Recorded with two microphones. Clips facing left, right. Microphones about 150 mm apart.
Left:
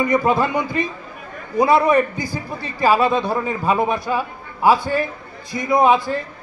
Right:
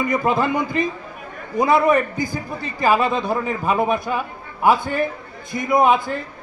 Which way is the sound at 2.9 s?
Centre (ahead or behind).